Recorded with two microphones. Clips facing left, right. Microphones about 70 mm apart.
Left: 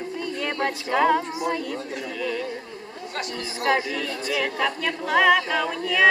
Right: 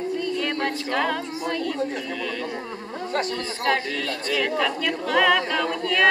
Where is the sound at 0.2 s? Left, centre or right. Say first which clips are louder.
Right 1 dB; centre.